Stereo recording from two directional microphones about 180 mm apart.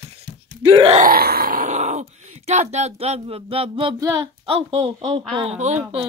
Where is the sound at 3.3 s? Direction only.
30° right (ahead or behind).